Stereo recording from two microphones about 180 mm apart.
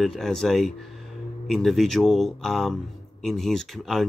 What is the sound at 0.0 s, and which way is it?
Speech, centre (ahead or behind).